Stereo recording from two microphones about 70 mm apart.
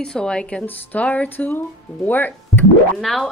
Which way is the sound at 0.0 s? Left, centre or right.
Centre.